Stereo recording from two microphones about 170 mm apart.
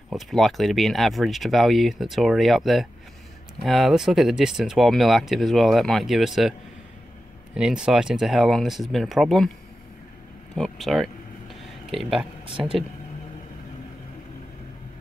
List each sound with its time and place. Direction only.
0.1 s speech: centre (ahead or behind)
7.5 s speech: 5° right (ahead or behind)
10.5 s speech: centre (ahead or behind)